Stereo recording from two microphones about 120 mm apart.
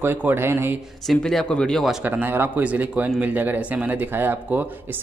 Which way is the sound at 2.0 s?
15° right (ahead or behind).